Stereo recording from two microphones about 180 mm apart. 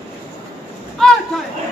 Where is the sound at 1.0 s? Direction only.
Centre (ahead or behind).